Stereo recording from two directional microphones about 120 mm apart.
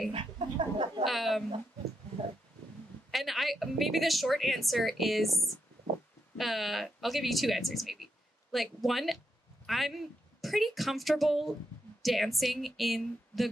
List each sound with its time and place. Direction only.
0.1 s speech: 50° right (ahead or behind)
1.0 s a woman's voice: centre (ahead or behind)
3.1 s a woman's voice: centre (ahead or behind)